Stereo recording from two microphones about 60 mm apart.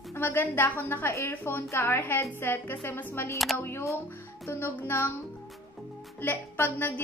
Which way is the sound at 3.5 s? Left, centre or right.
Left.